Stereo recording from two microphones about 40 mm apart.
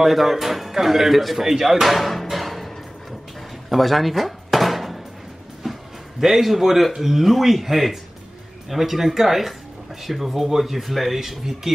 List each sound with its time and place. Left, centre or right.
0.0 s speech: centre
1.4 s music: centre
3.7 s a sound: centre
7.0 s speech: centre